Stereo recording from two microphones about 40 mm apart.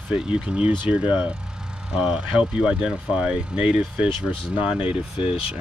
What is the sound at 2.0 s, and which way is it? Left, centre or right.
Speech, centre.